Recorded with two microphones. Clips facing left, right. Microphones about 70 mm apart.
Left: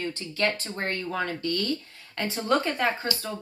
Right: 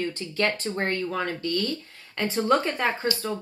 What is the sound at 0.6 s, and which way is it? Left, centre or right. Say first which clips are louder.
Speech: right 4 dB; centre.